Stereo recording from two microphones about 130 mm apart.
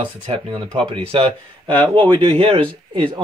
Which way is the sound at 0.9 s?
40° right (ahead or behind).